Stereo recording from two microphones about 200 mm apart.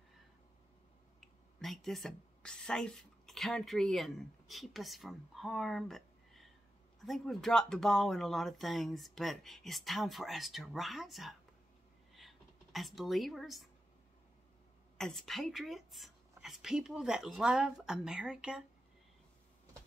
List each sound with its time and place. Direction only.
1.2 s speech: centre (ahead or behind)
12.1 s a sound: centre (ahead or behind)
15.0 s speech: centre (ahead or behind)